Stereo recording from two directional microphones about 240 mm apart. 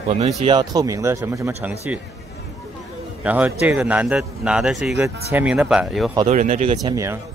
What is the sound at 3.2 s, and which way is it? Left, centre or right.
A man's voice, centre.